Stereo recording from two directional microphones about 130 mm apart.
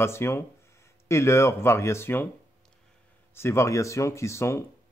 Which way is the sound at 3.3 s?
20° left (ahead or behind).